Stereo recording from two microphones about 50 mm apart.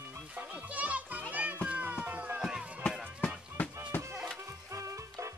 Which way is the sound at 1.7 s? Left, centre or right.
Right.